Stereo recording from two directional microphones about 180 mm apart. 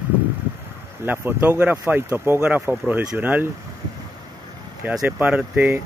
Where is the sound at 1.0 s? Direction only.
10° right (ahead or behind).